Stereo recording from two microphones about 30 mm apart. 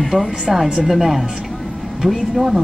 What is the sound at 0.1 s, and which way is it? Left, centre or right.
A woman's voice, centre.